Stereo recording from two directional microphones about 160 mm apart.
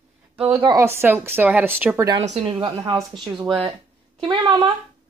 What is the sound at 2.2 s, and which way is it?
Speech, 45° right (ahead or behind).